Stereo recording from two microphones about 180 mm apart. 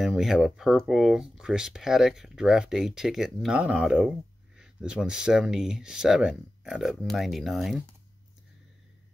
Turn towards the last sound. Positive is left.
turn(degrees=0)  # may be behind; listen again after turning